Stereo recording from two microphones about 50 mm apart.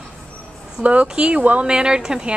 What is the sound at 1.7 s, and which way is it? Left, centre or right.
Speech, centre.